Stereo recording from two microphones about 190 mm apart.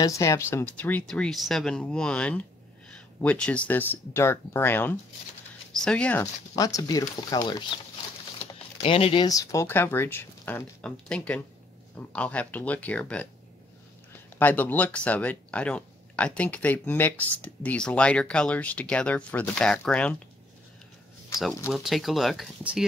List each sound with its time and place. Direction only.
0.0 s speech: 15° left (ahead or behind)
6.5 s speech: 20° left (ahead or behind)
8.8 s speech: 30° left (ahead or behind); by 13.3 s 5° left (ahead or behind)
14.4 s speech: 10° left (ahead or behind)
21.6 s speech: centre (ahead or behind)